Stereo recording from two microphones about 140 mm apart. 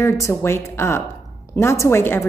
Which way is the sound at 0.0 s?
20° left (ahead or behind).